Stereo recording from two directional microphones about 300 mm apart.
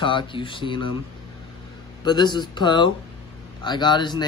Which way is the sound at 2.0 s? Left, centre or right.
Centre.